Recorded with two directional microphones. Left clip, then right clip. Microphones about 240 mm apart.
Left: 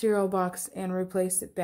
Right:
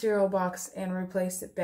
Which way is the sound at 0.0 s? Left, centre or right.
Left.